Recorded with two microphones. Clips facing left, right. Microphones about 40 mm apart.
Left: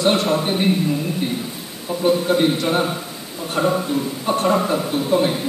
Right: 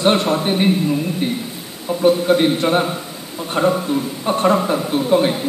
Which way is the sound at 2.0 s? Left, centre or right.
Centre.